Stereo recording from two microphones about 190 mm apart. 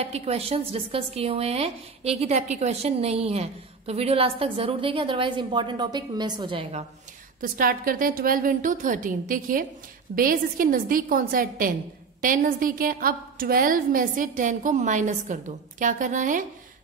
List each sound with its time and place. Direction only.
0.0 s speech: 35° right (ahead or behind)
7.3 s a woman's voice: 50° right (ahead or behind)